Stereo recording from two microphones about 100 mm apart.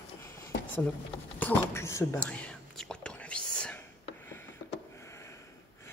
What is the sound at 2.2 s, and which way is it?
Whispering, 15° left (ahead or behind).